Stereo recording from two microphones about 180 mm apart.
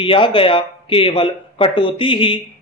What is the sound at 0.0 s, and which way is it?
Speech, 30° left (ahead or behind).